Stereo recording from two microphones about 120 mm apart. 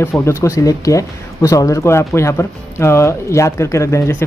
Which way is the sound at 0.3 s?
25° left (ahead or behind).